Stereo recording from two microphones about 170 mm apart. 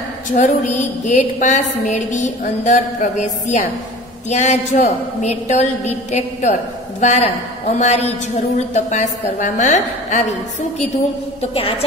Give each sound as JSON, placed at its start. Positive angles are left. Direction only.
{"t": 0.3, "sound": "a woman's voice", "side_deg": 50}